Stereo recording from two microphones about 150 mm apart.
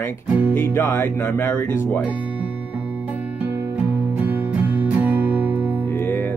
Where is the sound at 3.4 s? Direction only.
10° right (ahead or behind).